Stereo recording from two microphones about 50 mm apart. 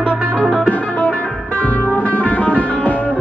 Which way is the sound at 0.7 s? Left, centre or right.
Left.